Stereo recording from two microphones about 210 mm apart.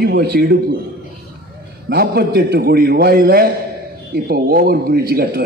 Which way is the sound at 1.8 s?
45° right (ahead or behind).